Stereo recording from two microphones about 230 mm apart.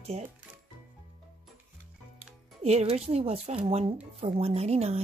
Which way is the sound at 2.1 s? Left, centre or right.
Right.